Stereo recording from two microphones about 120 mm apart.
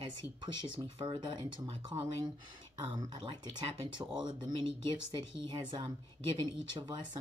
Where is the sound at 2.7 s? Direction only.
40° right (ahead or behind).